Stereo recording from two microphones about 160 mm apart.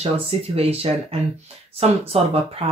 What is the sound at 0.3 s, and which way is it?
Speech, 40° right (ahead or behind).